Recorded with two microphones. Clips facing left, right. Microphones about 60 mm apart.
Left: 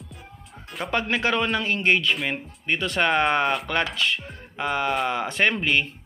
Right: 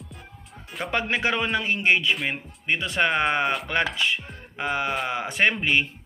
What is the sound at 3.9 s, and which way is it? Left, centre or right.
Speech, right.